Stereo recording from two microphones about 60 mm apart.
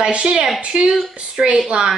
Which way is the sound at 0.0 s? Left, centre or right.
Centre.